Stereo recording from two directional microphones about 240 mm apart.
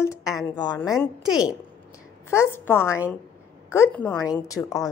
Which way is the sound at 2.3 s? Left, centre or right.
Centre.